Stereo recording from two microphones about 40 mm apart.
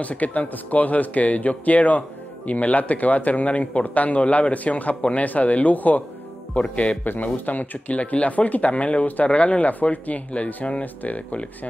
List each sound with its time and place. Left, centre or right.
0.0 s speech: left
7.4 s speech: left